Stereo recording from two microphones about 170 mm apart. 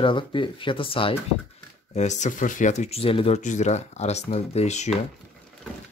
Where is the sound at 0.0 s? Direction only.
30° left (ahead or behind).